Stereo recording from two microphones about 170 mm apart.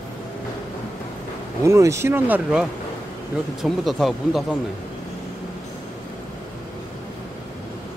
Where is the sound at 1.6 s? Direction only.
15° right (ahead or behind).